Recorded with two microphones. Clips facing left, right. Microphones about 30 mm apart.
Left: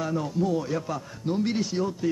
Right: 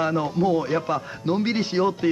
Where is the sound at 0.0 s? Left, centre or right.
Right.